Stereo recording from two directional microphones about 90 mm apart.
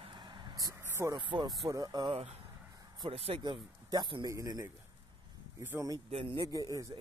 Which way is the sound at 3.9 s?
55° right (ahead or behind).